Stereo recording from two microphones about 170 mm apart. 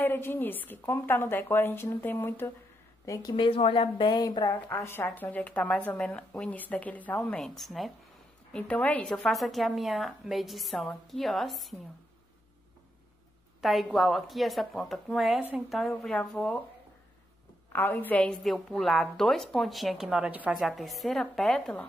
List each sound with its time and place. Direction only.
0.0 s a woman's voice: 10° left (ahead or behind)
4.6 s a woman's voice: 15° left (ahead or behind)
13.6 s a woman's voice: centre (ahead or behind)
17.7 s a woman's voice: 10° left (ahead or behind)